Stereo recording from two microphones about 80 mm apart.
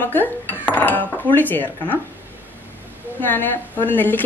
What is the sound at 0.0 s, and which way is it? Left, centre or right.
A woman's voice, left.